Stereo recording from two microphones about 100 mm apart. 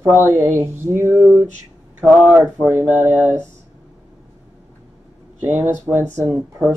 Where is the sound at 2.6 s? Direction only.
20° right (ahead or behind).